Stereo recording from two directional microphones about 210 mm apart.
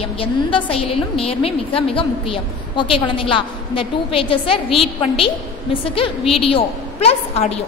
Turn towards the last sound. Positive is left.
turn(degrees=30)  # may be behind; listen again after turning